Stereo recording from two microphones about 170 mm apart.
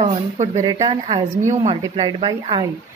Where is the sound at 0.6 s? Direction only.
25° right (ahead or behind); by 1.8 s 40° right (ahead or behind).